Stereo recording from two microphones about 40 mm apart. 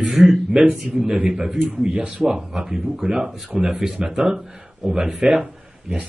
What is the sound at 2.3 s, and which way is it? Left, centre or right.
Speech, centre.